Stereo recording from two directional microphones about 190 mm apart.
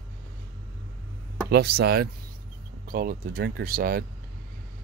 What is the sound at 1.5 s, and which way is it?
Speech, 55° right (ahead or behind).